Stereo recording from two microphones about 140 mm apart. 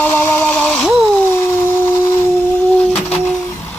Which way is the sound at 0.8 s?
Centre (ahead or behind).